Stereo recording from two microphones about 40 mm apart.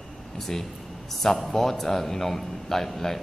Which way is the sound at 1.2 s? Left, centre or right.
Centre.